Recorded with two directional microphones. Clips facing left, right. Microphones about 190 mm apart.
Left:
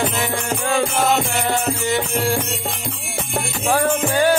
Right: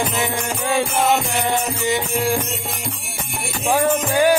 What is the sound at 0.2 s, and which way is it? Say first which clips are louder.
Music: even; 20° right (ahead or behind).